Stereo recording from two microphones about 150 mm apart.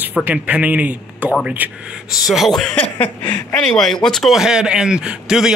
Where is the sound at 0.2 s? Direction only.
10° right (ahead or behind).